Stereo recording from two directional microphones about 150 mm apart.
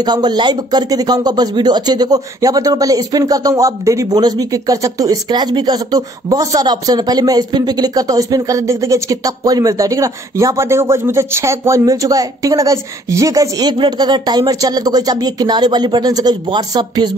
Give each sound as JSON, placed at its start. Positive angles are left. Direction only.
{"t": 0.0, "sound": "speech", "side_deg": -30}